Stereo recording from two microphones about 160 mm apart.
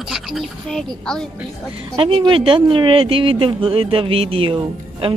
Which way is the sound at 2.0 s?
35° right (ahead or behind).